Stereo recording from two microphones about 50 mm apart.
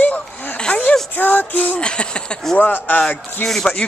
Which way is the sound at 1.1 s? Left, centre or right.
Left.